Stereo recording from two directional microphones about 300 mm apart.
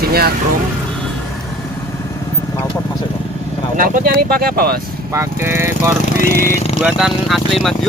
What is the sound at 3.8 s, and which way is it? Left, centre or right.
Speech, right.